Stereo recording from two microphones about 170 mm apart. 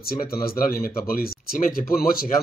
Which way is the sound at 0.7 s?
60° left (ahead or behind).